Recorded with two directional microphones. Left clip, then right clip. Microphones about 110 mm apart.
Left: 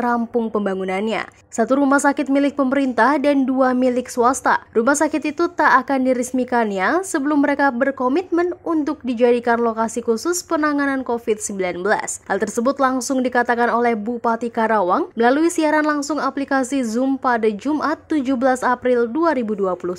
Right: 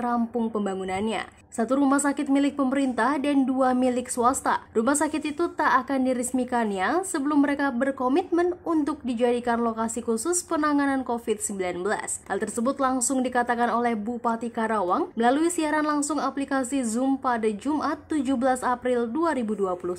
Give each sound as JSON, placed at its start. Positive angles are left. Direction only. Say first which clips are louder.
{"t": 0.7, "sound": "a woman's voice", "louder": "left 7 dB", "side_deg": 45}
{"t": 17.2, "sound": "a woman's voice", "louder": "left 7 dB", "side_deg": 35}